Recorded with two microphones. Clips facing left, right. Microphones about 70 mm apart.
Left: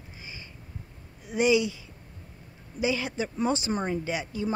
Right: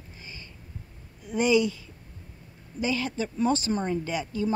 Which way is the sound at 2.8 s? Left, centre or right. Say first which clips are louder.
Even; centre.